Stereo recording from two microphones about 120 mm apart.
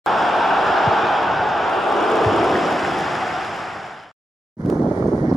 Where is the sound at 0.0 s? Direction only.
Centre (ahead or behind).